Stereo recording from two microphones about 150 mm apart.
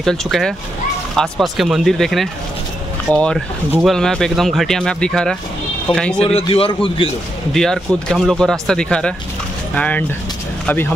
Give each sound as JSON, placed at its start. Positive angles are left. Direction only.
{"t": 0.0, "sound": "speech", "side_deg": 0}
{"t": 6.2, "sound": "a man's voice", "side_deg": 40}
{"t": 7.5, "sound": "speech", "side_deg": 5}